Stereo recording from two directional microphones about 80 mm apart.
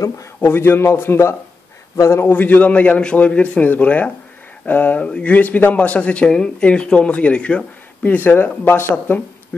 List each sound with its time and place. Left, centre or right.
0.4 s a man's voice: left
2.3 s speech: centre